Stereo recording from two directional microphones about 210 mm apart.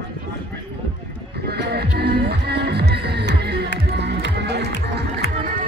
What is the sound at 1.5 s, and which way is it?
Music, 50° right (ahead or behind).